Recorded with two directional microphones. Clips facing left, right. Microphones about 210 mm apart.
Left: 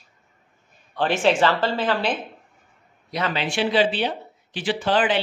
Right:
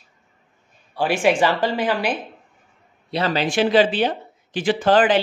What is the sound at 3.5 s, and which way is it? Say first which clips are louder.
Speech: right 4 dB; 45° right (ahead or behind).